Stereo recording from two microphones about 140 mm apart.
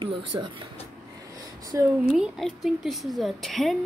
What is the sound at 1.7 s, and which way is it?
Speech, 20° right (ahead or behind).